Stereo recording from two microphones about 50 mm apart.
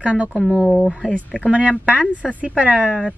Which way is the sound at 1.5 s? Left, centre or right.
Right.